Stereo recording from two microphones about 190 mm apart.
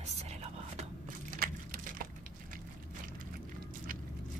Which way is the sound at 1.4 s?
50° right (ahead or behind).